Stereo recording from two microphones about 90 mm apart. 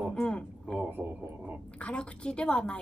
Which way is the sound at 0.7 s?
20° right (ahead or behind).